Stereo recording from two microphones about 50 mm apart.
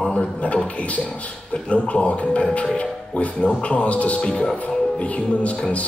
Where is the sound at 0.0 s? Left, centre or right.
Left.